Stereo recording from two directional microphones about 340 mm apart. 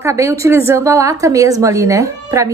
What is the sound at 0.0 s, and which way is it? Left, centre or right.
A woman's voice, centre.